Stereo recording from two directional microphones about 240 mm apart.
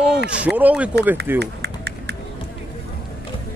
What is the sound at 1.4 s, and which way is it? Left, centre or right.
Run, right.